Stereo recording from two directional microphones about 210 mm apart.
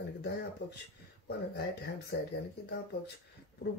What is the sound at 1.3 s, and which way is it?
Speech, 50° left (ahead or behind).